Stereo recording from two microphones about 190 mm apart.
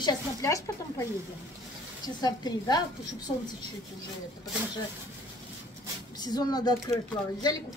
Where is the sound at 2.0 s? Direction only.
20° left (ahead or behind).